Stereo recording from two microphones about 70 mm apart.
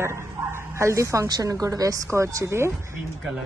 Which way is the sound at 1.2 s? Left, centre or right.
Right.